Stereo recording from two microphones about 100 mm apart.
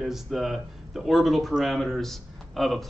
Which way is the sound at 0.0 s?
5° right (ahead or behind).